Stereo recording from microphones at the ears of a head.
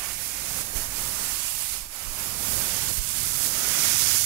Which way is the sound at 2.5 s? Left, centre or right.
Right.